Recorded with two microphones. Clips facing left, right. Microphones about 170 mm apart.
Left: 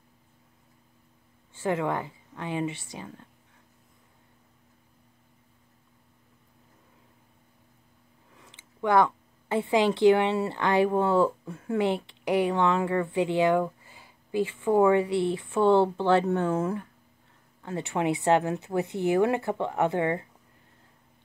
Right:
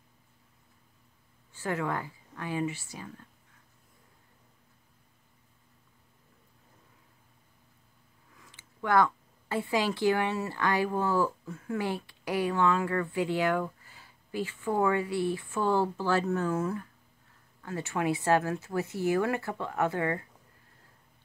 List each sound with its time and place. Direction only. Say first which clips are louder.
1.6 s speech: left 4 dB; 20° left (ahead or behind)
8.4 s speech: left 5 dB; 20° left (ahead or behind)